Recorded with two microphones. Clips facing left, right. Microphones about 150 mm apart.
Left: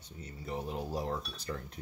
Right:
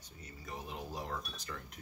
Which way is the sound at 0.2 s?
30° left (ahead or behind).